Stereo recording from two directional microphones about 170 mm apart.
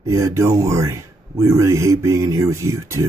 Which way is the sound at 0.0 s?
15° right (ahead or behind).